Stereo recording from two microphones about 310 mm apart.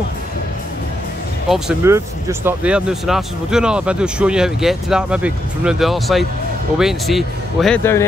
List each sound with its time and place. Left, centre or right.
1.5 s speech: centre